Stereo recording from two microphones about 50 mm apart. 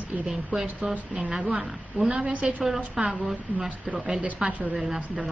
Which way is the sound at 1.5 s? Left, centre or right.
Centre.